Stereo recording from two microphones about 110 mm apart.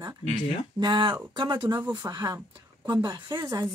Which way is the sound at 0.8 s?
40° right (ahead or behind).